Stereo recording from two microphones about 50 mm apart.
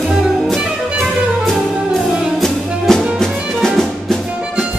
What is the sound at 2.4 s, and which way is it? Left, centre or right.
Music, centre.